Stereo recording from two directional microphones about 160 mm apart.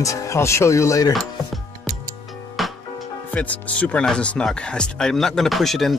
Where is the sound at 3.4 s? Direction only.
10° left (ahead or behind).